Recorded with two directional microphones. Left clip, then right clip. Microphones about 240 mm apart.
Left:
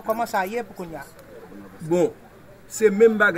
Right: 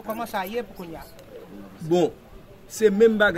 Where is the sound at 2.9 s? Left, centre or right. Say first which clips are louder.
Left 2 dB; centre.